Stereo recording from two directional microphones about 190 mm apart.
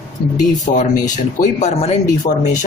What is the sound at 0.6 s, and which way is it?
Speech, 40° left (ahead or behind).